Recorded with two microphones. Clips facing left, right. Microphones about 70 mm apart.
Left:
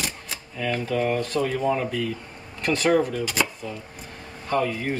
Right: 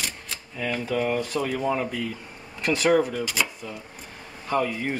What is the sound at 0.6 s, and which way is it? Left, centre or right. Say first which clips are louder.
Speech: left 1 dB; centre.